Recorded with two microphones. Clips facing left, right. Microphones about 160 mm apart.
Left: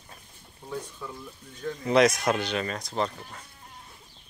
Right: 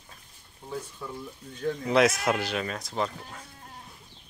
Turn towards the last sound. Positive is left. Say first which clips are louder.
# left 1 dB
turn(degrees=0)  # may be behind; listen again after turning